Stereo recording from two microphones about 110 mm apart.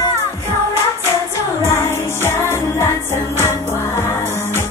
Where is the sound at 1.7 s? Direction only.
25° left (ahead or behind).